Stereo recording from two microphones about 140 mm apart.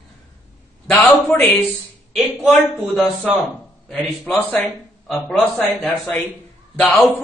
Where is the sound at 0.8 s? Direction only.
10° left (ahead or behind).